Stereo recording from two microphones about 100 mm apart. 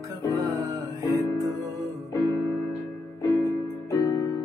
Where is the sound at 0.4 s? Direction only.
45° right (ahead or behind).